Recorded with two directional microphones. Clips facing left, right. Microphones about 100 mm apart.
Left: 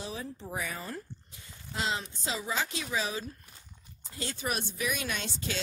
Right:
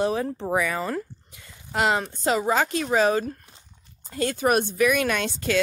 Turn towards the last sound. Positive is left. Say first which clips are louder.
# right 11 dB
turn(degrees=-65)  # may be behind; listen again after turning